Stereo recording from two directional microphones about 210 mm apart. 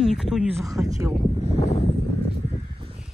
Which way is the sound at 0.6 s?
15° right (ahead or behind).